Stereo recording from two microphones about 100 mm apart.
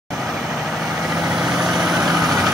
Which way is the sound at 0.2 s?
Centre (ahead or behind).